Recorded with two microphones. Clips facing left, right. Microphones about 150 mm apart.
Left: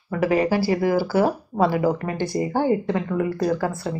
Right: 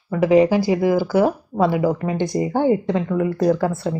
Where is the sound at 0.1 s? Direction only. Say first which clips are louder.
Right 5 dB; 15° right (ahead or behind).